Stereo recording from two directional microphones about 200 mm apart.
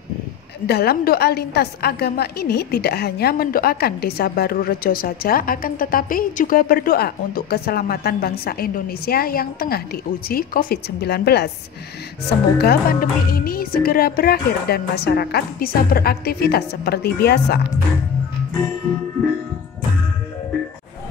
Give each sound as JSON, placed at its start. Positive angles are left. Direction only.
{"t": 0.7, "sound": "a woman's voice", "side_deg": 50}